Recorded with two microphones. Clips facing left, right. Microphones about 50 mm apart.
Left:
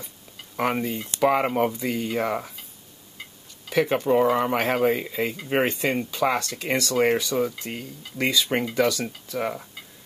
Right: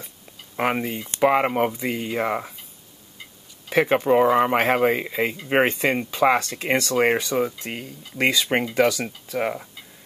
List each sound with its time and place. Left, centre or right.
0.6 s speech: right
3.7 s speech: right